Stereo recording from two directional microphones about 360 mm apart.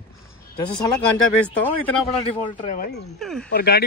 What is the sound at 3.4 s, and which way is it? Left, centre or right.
Speech, left.